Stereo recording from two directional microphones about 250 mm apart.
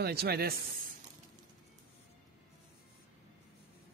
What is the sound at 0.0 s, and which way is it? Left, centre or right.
Speech, right.